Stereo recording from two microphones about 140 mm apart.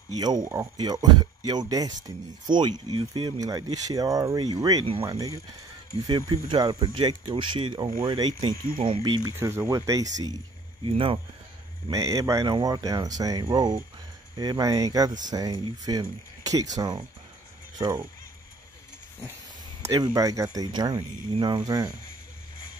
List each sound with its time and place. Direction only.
0.2 s speech: 30° right (ahead or behind)
9.3 s speech: 20° right (ahead or behind)
10.8 s speech: 40° right (ahead or behind)
11.9 s speech: 25° right (ahead or behind)
19.8 s speech: 25° right (ahead or behind)